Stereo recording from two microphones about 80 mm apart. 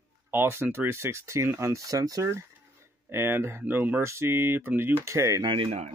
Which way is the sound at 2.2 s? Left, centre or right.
Right.